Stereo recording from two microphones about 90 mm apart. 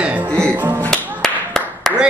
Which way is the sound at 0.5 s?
25° right (ahead or behind).